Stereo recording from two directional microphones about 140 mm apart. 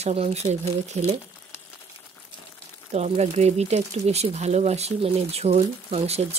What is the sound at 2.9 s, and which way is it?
Speech, 50° right (ahead or behind).